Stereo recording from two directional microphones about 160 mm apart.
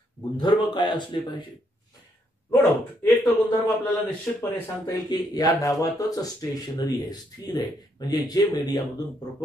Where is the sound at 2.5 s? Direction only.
15° left (ahead or behind).